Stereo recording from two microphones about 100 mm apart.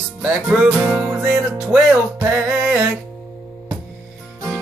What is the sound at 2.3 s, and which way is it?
Music, 15° right (ahead or behind).